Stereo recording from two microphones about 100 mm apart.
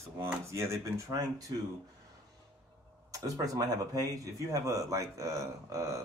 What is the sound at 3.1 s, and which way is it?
Speech, 35° right (ahead or behind).